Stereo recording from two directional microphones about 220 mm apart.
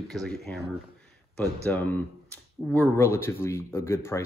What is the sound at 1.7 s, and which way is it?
Speech, 10° left (ahead or behind).